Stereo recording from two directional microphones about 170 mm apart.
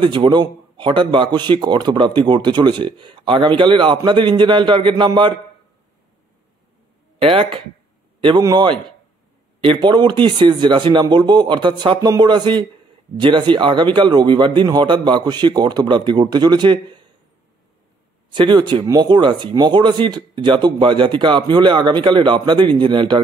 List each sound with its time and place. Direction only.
0.0 s a man's voice: 25° right (ahead or behind)
7.2 s a man's voice: 35° right (ahead or behind)
18.3 s a man's voice: 25° right (ahead or behind)